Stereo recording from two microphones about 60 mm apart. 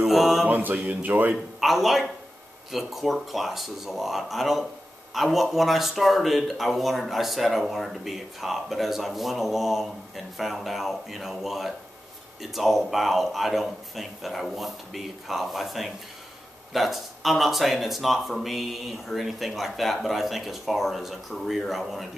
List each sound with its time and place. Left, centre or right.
0.0 s mantra: centre
0.5 s speech: right
1.6 s speech: centre